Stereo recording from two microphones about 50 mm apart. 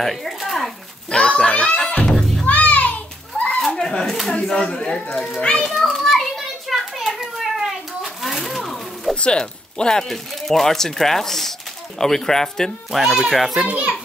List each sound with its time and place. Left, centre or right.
0.0 s a sound: centre
1.1 s a child's voice: centre
1.5 s music: centre
2.4 s music: left
3.6 s a sound: centre
4.0 s a child's voice: centre
4.6 s a child's voice: centre
5.7 s children playing: centre
7.2 s a sound: centre
9.1 s speech: left
12.9 s a child's voice: centre
13.7 s a child's voice: right